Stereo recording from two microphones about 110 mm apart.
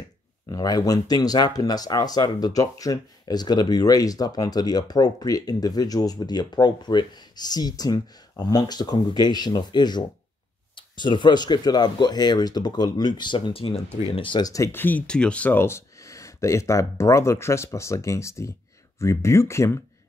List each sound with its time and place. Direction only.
0.5 s speech: 35° left (ahead or behind)
13.5 s speech: 60° left (ahead or behind)
14.1 s speech: 45° left (ahead or behind)
14.5 s speech: 25° left (ahead or behind)